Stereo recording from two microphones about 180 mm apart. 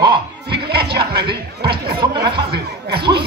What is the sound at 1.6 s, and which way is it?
Speech, 65° right (ahead or behind).